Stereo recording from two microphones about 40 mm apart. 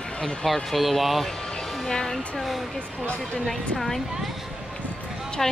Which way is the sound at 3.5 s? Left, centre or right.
Centre.